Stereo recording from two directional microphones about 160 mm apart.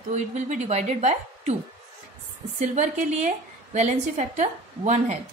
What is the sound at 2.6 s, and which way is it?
A woman's voice, 50° right (ahead or behind).